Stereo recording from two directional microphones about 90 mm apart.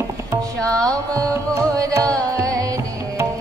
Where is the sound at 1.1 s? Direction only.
40° right (ahead or behind).